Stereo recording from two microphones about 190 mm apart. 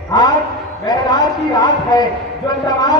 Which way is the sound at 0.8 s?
20° left (ahead or behind).